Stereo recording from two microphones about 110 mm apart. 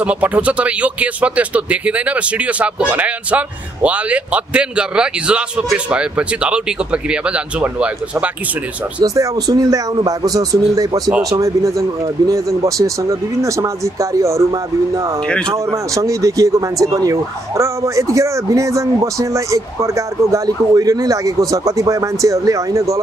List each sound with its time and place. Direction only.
0.0 s speech: 15° right (ahead or behind)
9.0 s a man's voice: 30° right (ahead or behind)